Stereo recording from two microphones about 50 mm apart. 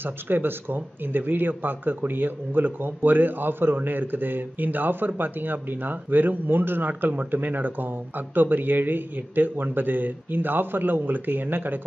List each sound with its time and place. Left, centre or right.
0.0 s speech: right